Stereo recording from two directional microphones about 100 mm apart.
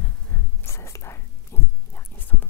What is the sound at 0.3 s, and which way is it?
Whispering, 20° left (ahead or behind).